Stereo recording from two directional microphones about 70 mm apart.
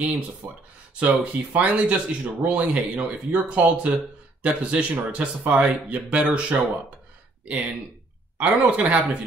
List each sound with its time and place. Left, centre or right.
0.4 s speech: right
0.9 s speech: right
8.4 s speech: centre